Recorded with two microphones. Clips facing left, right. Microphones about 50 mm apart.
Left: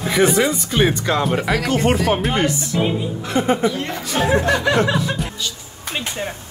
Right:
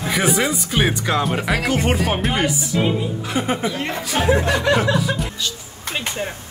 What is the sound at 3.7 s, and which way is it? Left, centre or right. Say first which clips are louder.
Speech: left 1 dB; right.